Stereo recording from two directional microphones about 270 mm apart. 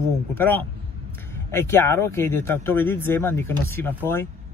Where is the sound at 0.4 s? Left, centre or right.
Centre.